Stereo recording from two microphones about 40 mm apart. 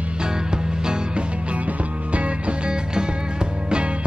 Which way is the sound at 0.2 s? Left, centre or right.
Centre.